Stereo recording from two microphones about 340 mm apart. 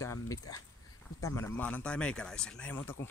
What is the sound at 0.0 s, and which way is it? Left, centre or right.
Speech, centre.